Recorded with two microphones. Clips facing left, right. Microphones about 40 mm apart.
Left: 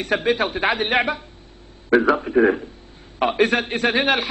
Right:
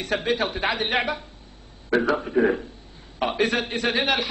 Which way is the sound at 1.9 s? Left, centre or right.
Left.